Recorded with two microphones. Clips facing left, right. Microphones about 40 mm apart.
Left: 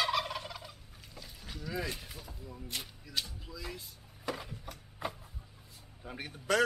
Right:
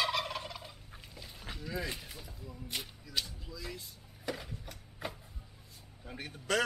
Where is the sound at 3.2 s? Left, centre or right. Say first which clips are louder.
Even; centre.